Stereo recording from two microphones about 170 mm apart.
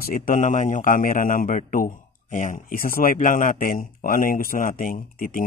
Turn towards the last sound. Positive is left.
turn(degrees=55)  # may be behind; listen again after turning